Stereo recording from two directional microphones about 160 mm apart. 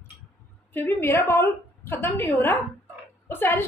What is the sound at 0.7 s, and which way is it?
A woman's voice, 15° left (ahead or behind).